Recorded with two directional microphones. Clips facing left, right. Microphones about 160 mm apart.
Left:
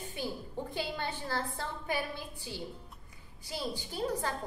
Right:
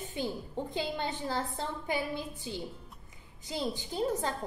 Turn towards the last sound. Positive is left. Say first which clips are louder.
# right 2 dB
turn(degrees=-20)  # may be behind; listen again after turning